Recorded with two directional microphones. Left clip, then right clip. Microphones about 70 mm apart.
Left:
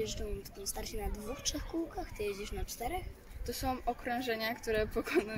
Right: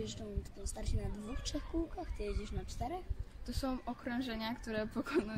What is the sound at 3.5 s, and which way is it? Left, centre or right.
A woman's voice, right.